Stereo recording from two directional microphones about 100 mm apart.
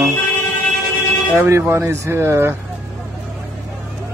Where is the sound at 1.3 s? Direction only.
30° right (ahead or behind).